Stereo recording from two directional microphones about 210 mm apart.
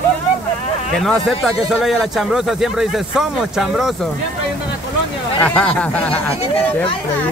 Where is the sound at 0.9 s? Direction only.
Centre (ahead or behind).